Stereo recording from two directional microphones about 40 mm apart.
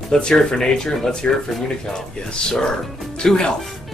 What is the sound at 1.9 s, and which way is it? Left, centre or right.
Speech, centre.